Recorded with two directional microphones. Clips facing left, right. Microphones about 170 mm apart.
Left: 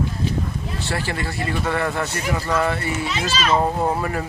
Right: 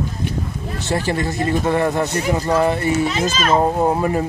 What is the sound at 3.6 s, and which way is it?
Speech, 20° right (ahead or behind).